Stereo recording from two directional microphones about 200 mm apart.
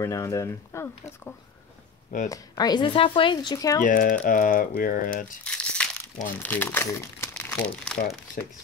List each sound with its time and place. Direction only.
0.0 s speech: 15° left (ahead or behind)
2.2 s speech: 15° left (ahead or behind)
3.8 s speech: 40° left (ahead or behind)
5.4 s crumpling: 5° left (ahead or behind)
6.2 s speech: 10° left (ahead or behind)